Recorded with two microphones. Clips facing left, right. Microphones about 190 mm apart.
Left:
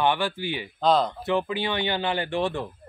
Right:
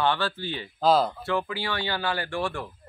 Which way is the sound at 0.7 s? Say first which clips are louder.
Even; 5° right (ahead or behind).